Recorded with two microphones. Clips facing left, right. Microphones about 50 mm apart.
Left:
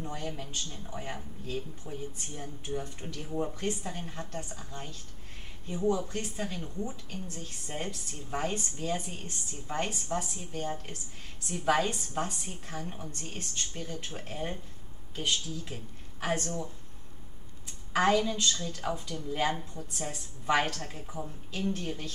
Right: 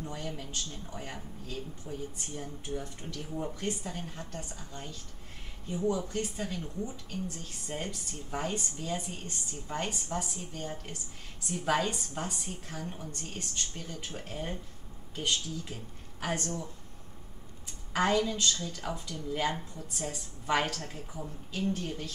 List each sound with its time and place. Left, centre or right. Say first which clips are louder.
0.0 s speech: left 1 dB; centre
17.9 s speech: left 2 dB; centre